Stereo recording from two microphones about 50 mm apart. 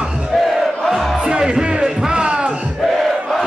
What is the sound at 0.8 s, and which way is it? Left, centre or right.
Music, centre.